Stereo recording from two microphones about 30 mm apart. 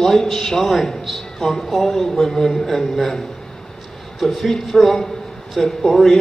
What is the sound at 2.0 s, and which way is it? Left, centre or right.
Speech, centre.